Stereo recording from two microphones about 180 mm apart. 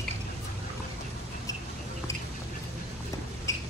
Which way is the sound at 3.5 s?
15° left (ahead or behind).